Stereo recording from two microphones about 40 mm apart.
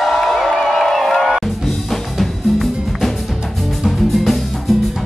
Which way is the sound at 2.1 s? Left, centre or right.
Centre.